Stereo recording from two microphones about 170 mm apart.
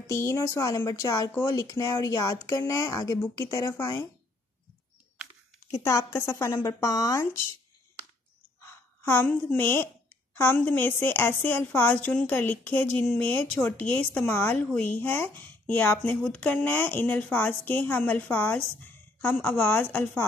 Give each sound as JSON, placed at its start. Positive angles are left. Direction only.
{"t": 0.1, "sound": "speech", "side_deg": 15}
{"t": 5.8, "sound": "a woman's voice", "side_deg": 15}
{"t": 8.6, "sound": "a woman's voice", "side_deg": 10}